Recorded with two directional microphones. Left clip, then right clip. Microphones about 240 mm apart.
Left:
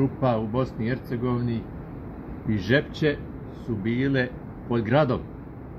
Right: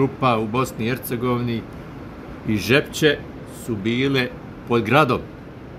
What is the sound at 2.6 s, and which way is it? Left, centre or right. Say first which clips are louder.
Speech: right 6 dB; centre.